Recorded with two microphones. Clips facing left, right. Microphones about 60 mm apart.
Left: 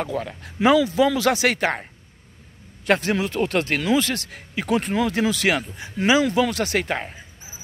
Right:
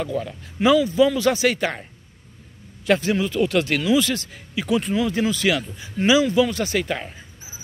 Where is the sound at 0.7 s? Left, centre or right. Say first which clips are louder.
Right 1 dB; left.